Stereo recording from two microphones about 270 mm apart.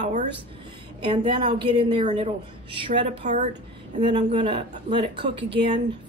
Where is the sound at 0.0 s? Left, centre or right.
Right.